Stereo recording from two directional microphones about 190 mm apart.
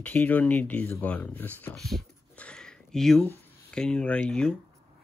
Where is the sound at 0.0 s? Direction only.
10° left (ahead or behind).